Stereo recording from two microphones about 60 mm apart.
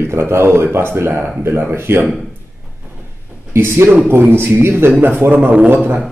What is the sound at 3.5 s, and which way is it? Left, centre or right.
Speech, right.